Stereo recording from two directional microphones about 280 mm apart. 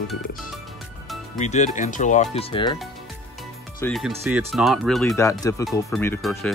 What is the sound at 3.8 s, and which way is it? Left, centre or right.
Speech, centre.